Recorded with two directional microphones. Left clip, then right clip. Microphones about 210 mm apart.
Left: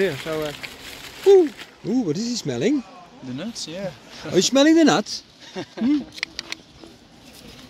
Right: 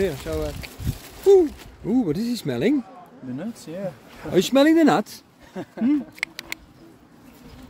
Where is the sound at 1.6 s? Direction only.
10° right (ahead or behind).